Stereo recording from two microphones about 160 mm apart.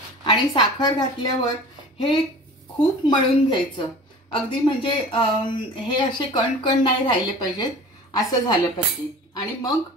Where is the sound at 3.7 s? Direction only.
30° left (ahead or behind).